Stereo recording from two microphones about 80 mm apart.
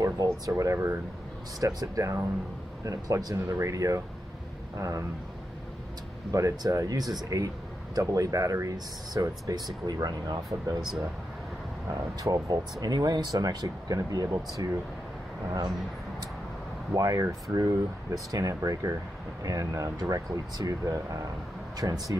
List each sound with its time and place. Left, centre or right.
0.0 s speech: right
1.6 s speech: right
6.3 s speech: right
12.2 s speech: right
13.9 s speech: right
16.9 s speech: right